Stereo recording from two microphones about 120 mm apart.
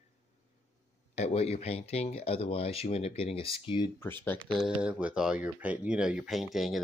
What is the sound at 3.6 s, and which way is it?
Speech, 40° left (ahead or behind).